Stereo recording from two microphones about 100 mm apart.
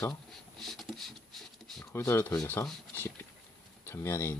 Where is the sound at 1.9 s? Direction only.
25° left (ahead or behind).